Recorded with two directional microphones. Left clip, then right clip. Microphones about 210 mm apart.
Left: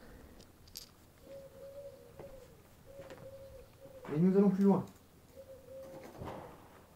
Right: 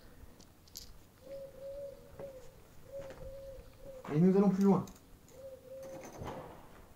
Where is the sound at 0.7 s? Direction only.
15° left (ahead or behind).